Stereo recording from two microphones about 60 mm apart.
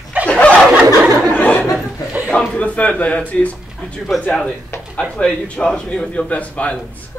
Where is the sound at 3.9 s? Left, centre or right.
Centre.